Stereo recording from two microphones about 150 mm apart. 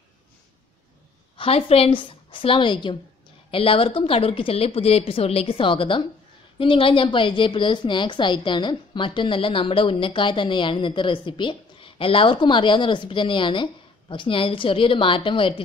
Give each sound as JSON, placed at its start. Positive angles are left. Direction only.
{"t": 1.4, "sound": "a woman's voice", "side_deg": 40}